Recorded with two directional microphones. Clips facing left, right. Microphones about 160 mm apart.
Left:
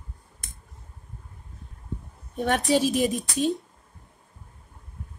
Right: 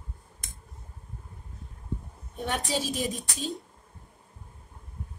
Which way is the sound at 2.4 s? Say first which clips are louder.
Left 8 dB; 60° left (ahead or behind).